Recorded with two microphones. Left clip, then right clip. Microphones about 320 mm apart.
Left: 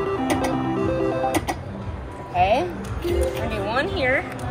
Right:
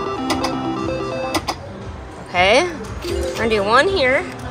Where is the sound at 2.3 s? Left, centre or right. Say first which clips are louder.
Right 5 dB; right.